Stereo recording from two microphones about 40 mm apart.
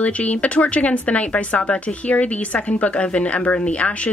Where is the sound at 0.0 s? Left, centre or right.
Left.